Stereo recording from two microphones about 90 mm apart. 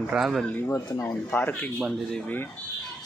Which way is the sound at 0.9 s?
35° left (ahead or behind).